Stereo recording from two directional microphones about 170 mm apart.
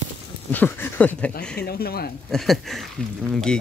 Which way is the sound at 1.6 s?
65° left (ahead or behind).